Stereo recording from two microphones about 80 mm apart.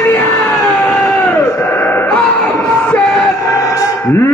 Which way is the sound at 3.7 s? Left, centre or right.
Left.